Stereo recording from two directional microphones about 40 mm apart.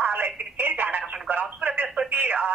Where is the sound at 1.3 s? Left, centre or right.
Right.